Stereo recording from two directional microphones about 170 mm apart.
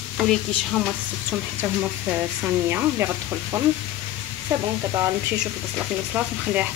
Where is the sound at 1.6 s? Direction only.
10° right (ahead or behind).